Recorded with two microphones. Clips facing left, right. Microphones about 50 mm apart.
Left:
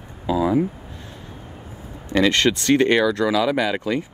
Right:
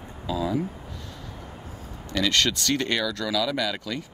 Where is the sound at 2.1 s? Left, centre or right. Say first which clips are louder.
Left 6 dB; left.